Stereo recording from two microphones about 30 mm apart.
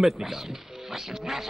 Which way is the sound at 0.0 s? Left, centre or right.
Centre.